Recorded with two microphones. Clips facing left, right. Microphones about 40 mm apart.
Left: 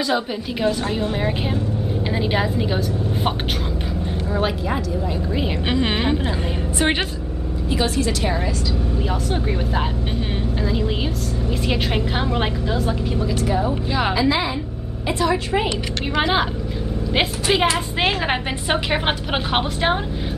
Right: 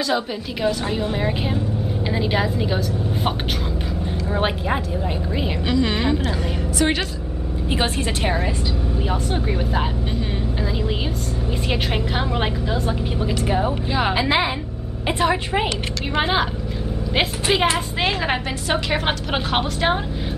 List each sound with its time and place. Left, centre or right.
0.1 s a woman's voice: centre
4.3 s a woman's voice: right
5.7 s a woman's voice: left
7.7 s a woman's voice: right
9.3 s a woman's voice: centre
11.7 s a woman's voice: centre
13.4 s a woman's voice: right
15.0 s a woman's voice: right
16.2 s a woman's voice: centre
18.0 s a woman's voice: centre